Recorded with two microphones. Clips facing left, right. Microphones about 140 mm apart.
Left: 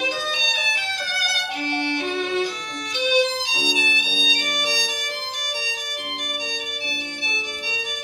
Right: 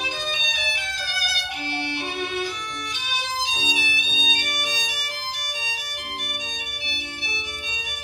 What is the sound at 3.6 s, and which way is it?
Music, 45° left (ahead or behind).